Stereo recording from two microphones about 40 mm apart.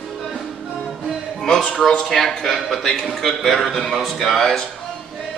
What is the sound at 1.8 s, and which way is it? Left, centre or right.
A man's voice, centre.